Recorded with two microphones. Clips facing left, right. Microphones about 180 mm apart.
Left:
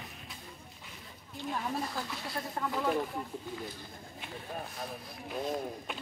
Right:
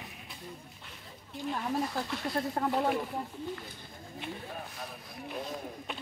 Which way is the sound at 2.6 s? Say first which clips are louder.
Right 3 dB; 45° right (ahead or behind).